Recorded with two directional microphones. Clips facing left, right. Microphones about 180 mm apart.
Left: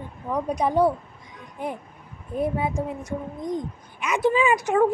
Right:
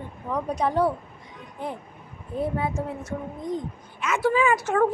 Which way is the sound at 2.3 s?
15° left (ahead or behind).